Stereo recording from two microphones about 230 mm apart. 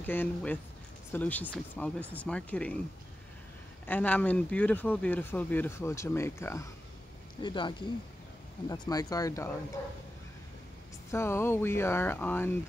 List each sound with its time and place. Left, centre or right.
0.0 s speech: centre
3.8 s speech: centre
11.1 s speech: centre